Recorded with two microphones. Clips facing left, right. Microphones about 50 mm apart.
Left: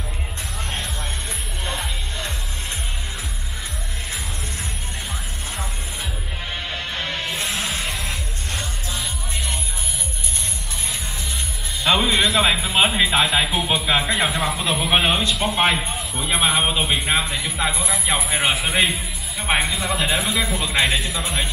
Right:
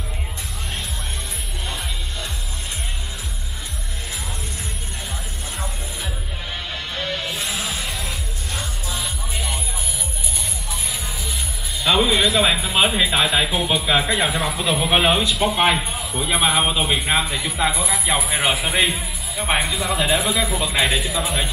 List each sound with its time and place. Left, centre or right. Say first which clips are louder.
7.0 s music: right 3 dB; left
7.2 s music: left 1 dB; centre
11.8 s speech: right 1 dB; centre